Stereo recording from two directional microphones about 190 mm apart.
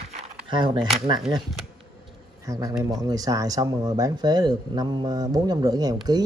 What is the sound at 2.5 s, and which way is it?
Speech, 20° right (ahead or behind).